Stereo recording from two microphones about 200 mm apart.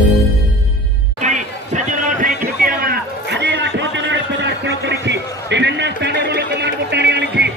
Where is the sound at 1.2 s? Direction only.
40° right (ahead or behind).